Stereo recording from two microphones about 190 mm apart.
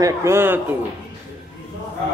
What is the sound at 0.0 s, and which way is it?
Speech, 15° right (ahead or behind).